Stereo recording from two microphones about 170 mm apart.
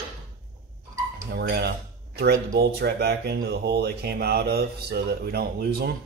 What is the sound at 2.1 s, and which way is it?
Speech, 70° right (ahead or behind).